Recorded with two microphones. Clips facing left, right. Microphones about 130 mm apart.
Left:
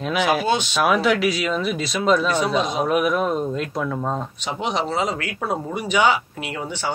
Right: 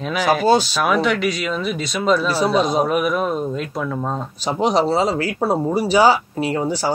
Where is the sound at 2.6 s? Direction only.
35° right (ahead or behind).